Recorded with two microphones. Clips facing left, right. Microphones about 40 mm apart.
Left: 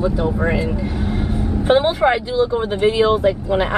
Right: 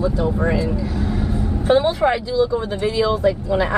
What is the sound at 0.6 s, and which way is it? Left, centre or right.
Vehicle, left.